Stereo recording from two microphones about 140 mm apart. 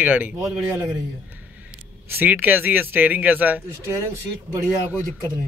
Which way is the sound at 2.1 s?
15° right (ahead or behind).